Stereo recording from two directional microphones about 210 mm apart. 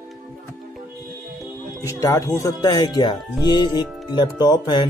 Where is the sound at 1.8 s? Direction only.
15° left (ahead or behind).